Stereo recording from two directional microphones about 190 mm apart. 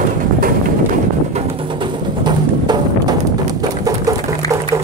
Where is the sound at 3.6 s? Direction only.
20° right (ahead or behind).